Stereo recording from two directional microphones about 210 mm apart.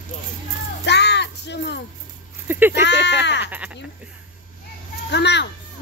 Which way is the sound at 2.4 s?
10° right (ahead or behind).